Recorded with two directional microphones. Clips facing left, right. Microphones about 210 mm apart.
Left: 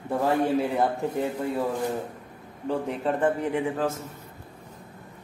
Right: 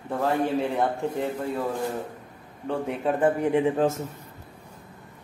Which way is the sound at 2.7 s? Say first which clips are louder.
Even; centre (ahead or behind).